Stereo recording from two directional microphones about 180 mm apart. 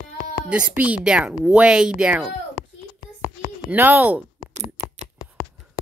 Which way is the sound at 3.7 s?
10° right (ahead or behind).